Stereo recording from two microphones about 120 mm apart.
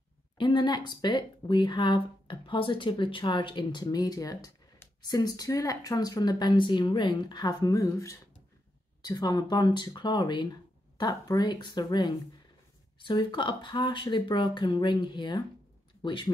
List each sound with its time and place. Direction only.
0.4 s speech: 40° left (ahead or behind)